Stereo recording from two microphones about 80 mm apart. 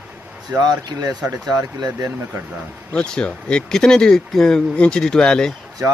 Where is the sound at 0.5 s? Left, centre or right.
Right.